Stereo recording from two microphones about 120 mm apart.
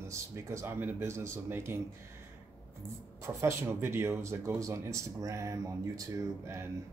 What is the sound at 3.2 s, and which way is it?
Speech, 25° right (ahead or behind).